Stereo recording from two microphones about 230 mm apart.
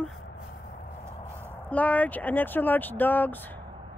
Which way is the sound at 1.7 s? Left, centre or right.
Centre.